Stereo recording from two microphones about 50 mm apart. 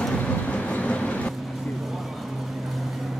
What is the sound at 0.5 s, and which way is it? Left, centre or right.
Train, left.